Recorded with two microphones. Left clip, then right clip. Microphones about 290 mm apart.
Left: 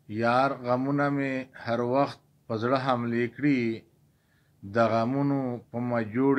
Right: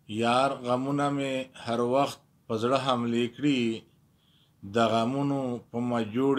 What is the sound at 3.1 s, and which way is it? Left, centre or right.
Speech, right.